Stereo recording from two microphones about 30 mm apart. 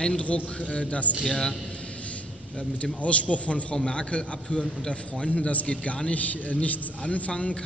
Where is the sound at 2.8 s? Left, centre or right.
Left.